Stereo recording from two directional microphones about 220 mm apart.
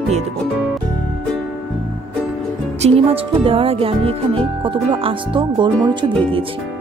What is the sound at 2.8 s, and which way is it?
Speech, 25° right (ahead or behind).